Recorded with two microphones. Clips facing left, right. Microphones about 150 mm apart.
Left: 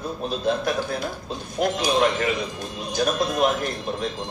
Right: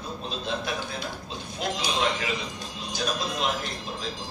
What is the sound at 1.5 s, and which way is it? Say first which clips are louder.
Music: left 8 dB; 55° left (ahead or behind).